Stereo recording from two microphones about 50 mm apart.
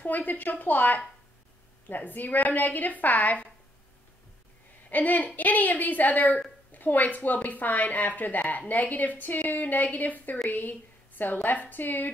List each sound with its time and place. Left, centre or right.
0.0 s a woman's voice: left
4.8 s a woman's voice: left